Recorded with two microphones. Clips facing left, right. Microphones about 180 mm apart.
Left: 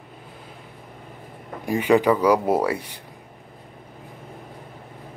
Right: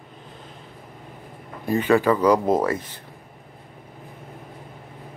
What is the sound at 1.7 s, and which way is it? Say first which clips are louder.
Speech: left 1 dB; 15° left (ahead or behind).